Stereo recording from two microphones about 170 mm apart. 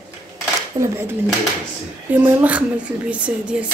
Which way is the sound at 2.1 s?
10° right (ahead or behind).